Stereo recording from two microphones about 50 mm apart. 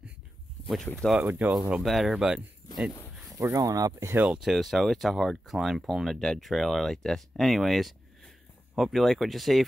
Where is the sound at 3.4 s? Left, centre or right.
Right.